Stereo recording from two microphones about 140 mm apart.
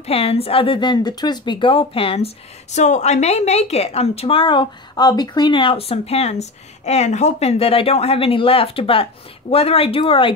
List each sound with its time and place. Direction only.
0.0 s speech: 45° left (ahead or behind)